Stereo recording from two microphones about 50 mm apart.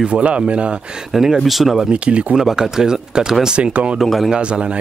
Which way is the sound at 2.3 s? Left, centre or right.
Centre.